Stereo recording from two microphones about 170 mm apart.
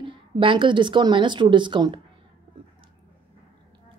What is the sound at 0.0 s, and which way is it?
A woman's voice, 30° right (ahead or behind).